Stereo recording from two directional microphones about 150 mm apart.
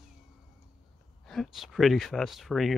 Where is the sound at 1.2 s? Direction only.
Centre (ahead or behind).